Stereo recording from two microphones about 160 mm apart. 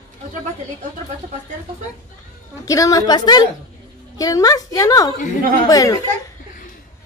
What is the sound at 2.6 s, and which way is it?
A woman's voice, 20° left (ahead or behind).